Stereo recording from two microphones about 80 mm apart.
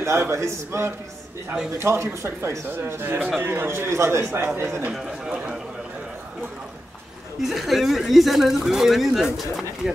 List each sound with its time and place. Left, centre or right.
0.0 s speech: right
4.9 s a man's voice: centre
7.4 s speech: centre